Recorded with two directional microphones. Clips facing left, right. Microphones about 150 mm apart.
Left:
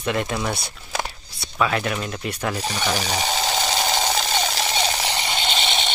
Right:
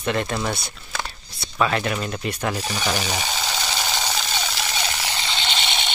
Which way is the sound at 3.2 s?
45° left (ahead or behind).